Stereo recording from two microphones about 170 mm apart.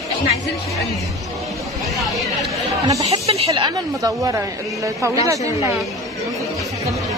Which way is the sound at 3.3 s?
35° right (ahead or behind).